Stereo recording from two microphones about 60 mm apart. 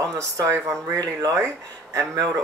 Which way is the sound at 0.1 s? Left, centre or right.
Right.